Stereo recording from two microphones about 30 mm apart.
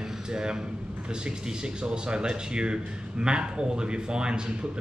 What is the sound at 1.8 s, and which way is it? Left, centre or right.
A man's voice, right.